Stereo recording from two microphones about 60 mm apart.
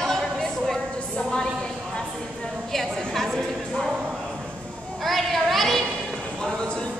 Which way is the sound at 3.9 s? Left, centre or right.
Centre.